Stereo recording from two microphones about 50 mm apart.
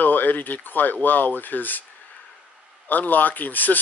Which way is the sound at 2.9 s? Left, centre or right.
Left.